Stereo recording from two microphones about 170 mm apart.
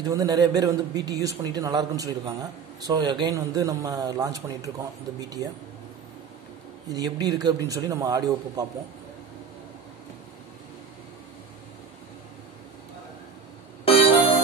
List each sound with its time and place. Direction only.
0.0 s a man's voice: 20° right (ahead or behind)
6.9 s a man's voice: 20° right (ahead or behind)
13.8 s music: 35° left (ahead or behind)